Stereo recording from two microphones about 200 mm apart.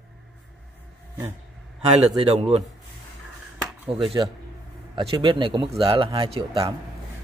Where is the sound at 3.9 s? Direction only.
25° right (ahead or behind).